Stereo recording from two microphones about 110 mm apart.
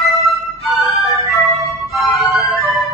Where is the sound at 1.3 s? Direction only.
25° right (ahead or behind).